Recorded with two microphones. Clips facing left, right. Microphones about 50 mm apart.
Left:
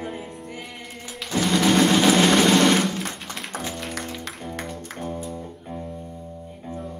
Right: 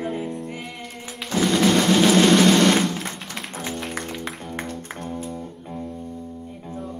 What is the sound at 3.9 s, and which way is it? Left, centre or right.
Music, centre.